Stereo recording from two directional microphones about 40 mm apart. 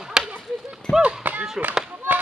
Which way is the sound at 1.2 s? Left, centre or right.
Right.